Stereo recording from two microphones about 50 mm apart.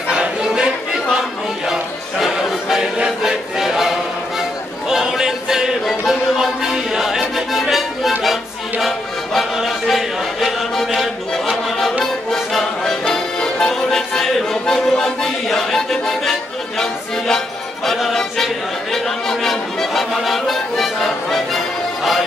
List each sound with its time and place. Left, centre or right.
0.1 s music: centre
1.7 s music: centre
3.2 s a sound: centre
8.2 s music: centre
11.6 s music: centre
17.8 s speech: centre